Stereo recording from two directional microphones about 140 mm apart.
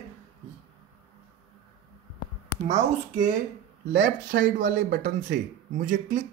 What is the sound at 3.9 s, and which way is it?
Speech, 75° right (ahead or behind).